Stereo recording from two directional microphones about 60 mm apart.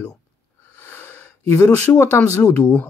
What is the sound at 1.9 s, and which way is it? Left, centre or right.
Speech, left.